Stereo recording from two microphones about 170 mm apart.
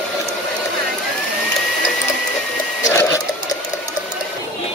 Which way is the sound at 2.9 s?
20° left (ahead or behind).